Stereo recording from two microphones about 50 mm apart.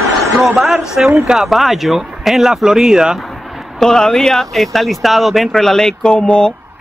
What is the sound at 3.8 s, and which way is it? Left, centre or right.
Speech, centre.